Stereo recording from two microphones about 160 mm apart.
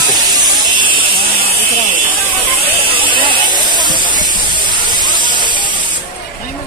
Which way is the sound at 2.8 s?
35° right (ahead or behind).